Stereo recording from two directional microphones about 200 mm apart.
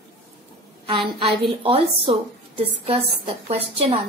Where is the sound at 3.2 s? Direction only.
30° right (ahead or behind).